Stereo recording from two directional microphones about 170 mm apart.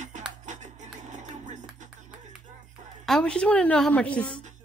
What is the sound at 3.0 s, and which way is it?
A woman's voice, 5° left (ahead or behind).